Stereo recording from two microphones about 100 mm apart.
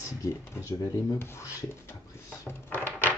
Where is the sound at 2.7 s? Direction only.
20° left (ahead or behind).